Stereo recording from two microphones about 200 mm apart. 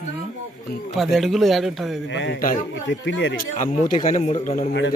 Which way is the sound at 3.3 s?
40° left (ahead or behind).